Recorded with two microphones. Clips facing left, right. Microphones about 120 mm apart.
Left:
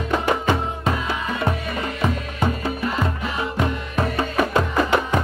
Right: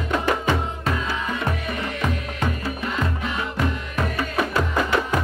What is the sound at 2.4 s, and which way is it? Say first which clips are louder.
Music: left 3 dB; 30° left (ahead or behind).